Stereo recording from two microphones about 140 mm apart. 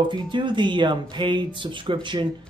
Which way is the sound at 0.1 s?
35° right (ahead or behind).